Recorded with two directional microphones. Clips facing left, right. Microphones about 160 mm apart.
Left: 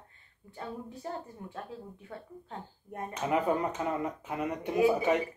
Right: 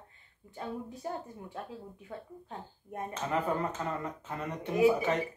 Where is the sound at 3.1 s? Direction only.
15° left (ahead or behind).